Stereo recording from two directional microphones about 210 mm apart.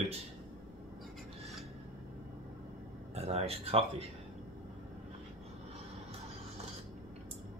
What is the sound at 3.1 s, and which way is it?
Speech, 30° right (ahead or behind).